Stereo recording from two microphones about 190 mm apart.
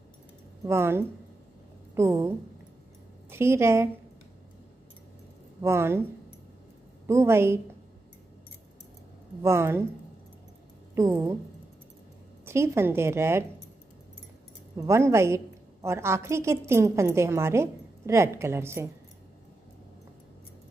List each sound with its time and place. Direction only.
0.7 s a woman's voice: 15° right (ahead or behind)
5.6 s a woman's voice: 15° right (ahead or behind)
7.1 s a woman's voice: 15° right (ahead or behind)
9.4 s a woman's voice: 15° right (ahead or behind)
11.0 s a woman's voice: 15° right (ahead or behind)
12.4 s a woman's voice: 15° right (ahead or behind)
14.8 s a woman's voice: 15° right (ahead or behind)